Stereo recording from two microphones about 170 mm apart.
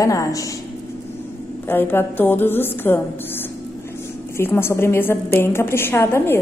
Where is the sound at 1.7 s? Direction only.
10° left (ahead or behind).